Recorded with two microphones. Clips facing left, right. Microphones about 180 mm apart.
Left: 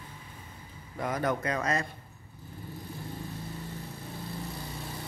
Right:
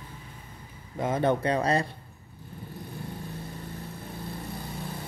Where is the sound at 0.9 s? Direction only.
25° right (ahead or behind).